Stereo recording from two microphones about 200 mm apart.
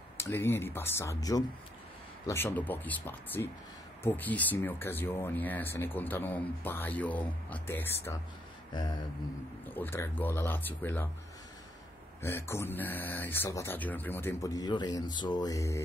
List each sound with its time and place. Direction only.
0.2 s speech: 10° left (ahead or behind)
8.7 s a sound: 20° left (ahead or behind)
9.7 s speech: 10° left (ahead or behind)
12.2 s speech: 10° left (ahead or behind)